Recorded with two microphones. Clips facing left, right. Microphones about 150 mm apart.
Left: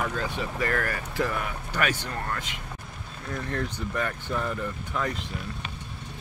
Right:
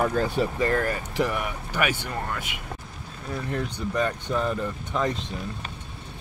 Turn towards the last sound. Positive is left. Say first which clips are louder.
# right 4 dB
turn(degrees=-20)  # may be behind; listen again after turning